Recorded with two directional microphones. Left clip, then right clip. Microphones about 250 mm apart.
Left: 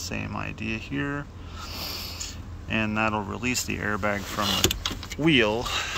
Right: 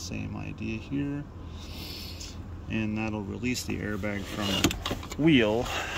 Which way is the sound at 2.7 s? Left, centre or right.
Centre.